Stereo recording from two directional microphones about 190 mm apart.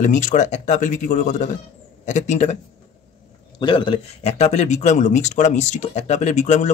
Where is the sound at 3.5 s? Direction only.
25° left (ahead or behind).